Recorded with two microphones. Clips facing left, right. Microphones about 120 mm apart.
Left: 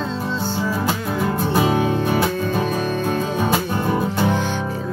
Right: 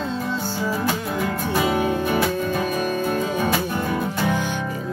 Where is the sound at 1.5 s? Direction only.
25° left (ahead or behind).